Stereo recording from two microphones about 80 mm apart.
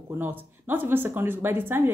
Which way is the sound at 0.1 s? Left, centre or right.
Right.